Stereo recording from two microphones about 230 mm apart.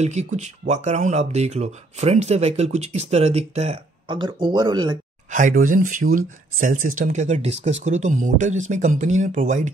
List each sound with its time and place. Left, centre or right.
0.0 s speech: right
5.3 s speech: right